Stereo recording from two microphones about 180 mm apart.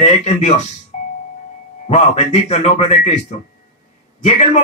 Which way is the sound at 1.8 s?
40° left (ahead or behind).